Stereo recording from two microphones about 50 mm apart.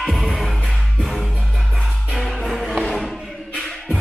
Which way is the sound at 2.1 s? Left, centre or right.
Centre.